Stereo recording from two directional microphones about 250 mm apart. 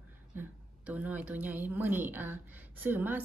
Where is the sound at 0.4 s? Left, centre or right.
Centre.